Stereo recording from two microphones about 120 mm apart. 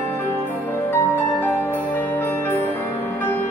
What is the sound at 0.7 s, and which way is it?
Music, 20° left (ahead or behind).